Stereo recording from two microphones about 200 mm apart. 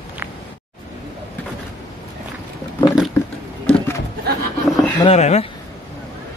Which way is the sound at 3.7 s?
5° left (ahead or behind).